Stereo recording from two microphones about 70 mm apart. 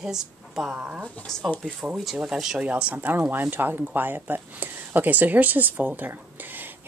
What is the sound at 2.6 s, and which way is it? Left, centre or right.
Speech, centre.